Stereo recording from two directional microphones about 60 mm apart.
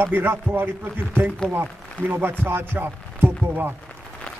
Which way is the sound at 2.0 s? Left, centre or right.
Right.